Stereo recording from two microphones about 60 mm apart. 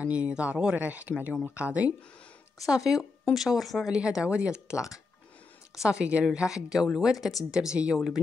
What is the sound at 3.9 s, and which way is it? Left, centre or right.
Speech, centre.